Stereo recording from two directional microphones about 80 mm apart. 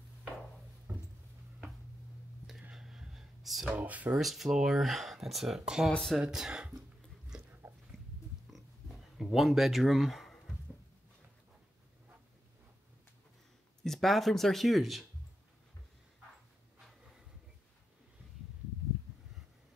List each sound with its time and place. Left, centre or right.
2.7 s a sound: centre
3.7 s speech: centre
4.1 s speech: centre
7.3 s a sound: centre
9.1 s speech: centre
13.8 s speech: centre